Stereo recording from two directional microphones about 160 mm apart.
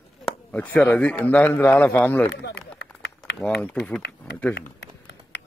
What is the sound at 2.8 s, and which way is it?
Run, 90° left.